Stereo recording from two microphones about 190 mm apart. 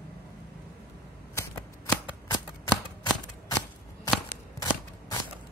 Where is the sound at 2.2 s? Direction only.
20° left (ahead or behind).